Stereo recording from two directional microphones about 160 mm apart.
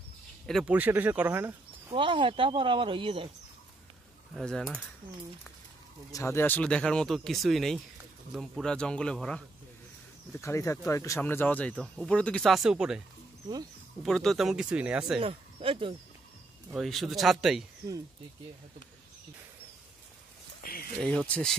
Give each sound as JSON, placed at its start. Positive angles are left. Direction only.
{"t": 0.5, "sound": "speech", "side_deg": 0}
{"t": 0.7, "sound": "speech", "side_deg": -10}
{"t": 1.9, "sound": "speech", "side_deg": -30}
{"t": 4.3, "sound": "speech", "side_deg": 0}
{"t": 6.1, "sound": "speech", "side_deg": 15}
{"t": 10.3, "sound": "speech", "side_deg": 15}
{"t": 14.0, "sound": "speech", "side_deg": 0}
{"t": 15.1, "sound": "speech", "side_deg": -35}
{"t": 16.7, "sound": "speech", "side_deg": 0}
{"t": 20.6, "sound": "a sound", "side_deg": 65}
{"t": 21.0, "sound": "speech", "side_deg": 5}